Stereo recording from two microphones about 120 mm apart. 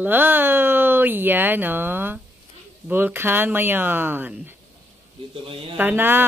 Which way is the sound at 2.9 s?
15° right (ahead or behind).